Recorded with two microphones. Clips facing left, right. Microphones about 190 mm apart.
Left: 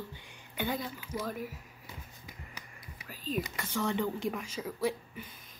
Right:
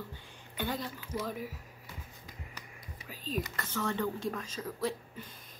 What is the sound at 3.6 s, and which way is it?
Speech, 15° left (ahead or behind).